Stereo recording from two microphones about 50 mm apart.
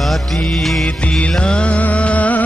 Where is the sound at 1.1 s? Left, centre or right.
Centre.